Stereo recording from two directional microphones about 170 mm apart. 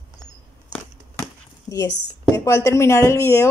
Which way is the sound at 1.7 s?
20° left (ahead or behind).